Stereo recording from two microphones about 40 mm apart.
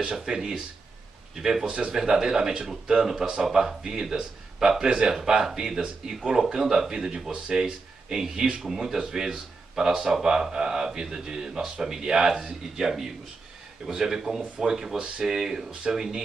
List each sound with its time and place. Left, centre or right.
0.0 s speech: centre
5.4 s speech: centre